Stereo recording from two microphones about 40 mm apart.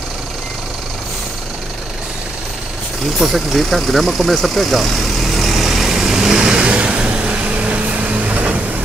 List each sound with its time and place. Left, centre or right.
3.2 s speech: centre
6.1 s vehicle: centre
6.7 s vehicle: right